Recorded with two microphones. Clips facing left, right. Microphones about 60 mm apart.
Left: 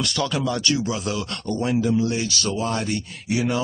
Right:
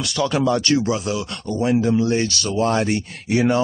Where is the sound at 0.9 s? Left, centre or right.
Centre.